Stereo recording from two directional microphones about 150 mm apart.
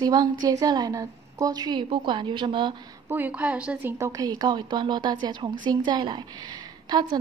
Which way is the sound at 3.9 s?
20° right (ahead or behind).